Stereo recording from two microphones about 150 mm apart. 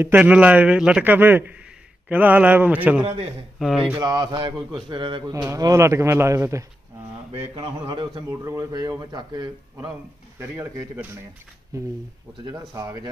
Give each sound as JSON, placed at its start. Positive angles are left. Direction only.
{"t": 0.0, "sound": "a man's voice", "side_deg": -10}
{"t": 4.0, "sound": "a man's voice", "side_deg": -30}
{"t": 5.3, "sound": "a man's voice", "side_deg": -20}
{"t": 7.5, "sound": "a man's voice", "side_deg": -30}
{"t": 8.3, "sound": "a man's voice", "side_deg": -20}
{"t": 10.4, "sound": "a man's voice", "side_deg": -15}